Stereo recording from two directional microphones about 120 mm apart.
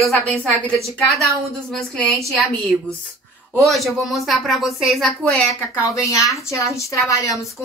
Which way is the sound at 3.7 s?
Centre (ahead or behind).